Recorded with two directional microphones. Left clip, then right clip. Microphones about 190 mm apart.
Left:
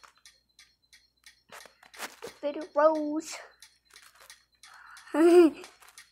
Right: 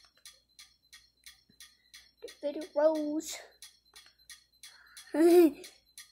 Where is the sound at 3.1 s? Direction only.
5° right (ahead or behind).